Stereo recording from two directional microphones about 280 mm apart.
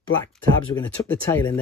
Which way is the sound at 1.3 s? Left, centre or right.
Centre.